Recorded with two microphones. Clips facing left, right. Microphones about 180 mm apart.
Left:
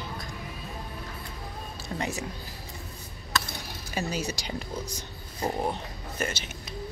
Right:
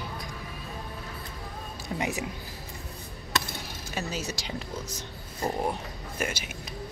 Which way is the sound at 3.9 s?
Centre (ahead or behind).